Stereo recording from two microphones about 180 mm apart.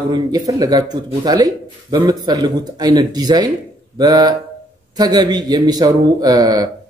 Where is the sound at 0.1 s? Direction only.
20° right (ahead or behind).